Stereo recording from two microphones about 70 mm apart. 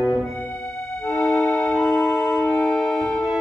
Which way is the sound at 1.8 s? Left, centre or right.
Centre.